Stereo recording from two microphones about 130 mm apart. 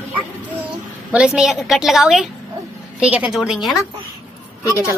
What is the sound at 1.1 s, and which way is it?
A woman's voice, 5° right (ahead or behind).